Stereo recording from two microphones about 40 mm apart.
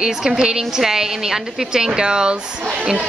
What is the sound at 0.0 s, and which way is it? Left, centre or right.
A woman's voice, centre.